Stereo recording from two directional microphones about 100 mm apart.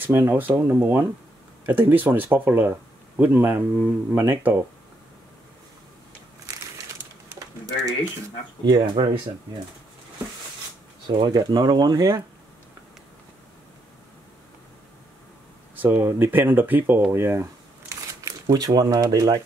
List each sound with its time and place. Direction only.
0.0 s speech: 25° right (ahead or behind)
7.2 s typing: 30° right (ahead or behind)
8.6 s speech: 45° right (ahead or behind)
11.1 s speech: 55° right (ahead or behind)
15.7 s speech: 20° right (ahead or behind)
17.1 s a sound: 25° right (ahead or behind)
18.5 s speech: 40° right (ahead or behind)